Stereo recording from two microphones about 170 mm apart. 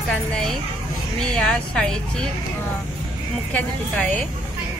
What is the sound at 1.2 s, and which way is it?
Speech, 5° left (ahead or behind).